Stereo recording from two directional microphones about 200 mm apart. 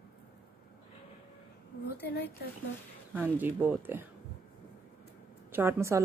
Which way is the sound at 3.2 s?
10° right (ahead or behind).